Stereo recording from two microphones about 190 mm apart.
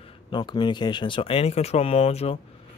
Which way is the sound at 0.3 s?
25° left (ahead or behind).